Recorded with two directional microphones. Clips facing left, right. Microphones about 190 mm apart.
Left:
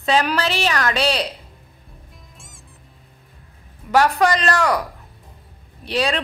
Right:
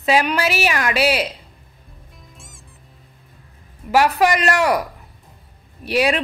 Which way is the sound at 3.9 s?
10° right (ahead or behind).